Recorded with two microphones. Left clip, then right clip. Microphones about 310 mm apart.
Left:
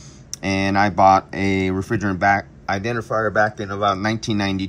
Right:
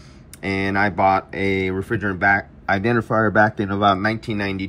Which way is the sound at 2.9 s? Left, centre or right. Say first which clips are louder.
Right 1 dB; right.